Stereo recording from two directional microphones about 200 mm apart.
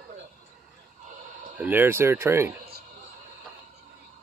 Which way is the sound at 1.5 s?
10° right (ahead or behind).